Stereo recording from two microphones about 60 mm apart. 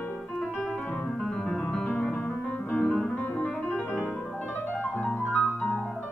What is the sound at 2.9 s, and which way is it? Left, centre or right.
Music, centre.